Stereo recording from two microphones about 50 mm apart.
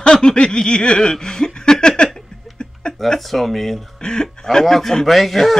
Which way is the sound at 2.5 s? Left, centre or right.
Centre.